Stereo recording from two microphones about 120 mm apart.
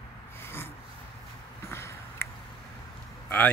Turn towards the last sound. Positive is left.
turn(degrees=10)  # may be behind; listen again after turning